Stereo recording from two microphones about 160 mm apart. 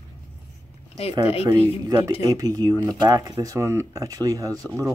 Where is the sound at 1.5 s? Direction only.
20° right (ahead or behind).